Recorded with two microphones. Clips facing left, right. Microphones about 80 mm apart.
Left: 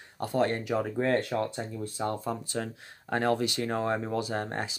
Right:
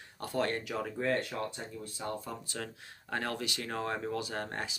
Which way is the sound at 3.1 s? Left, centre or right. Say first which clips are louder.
Left 9 dB; left.